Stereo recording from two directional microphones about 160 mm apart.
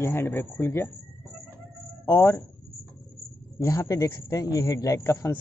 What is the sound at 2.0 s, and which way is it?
Speech, 15° left (ahead or behind).